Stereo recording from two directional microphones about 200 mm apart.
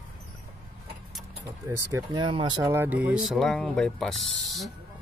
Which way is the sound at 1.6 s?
15° right (ahead or behind).